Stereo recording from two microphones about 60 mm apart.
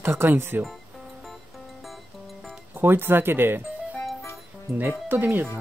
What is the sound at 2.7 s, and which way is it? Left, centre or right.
Speech, right.